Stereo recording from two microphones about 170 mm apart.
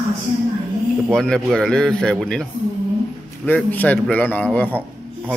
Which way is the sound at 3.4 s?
10° left (ahead or behind).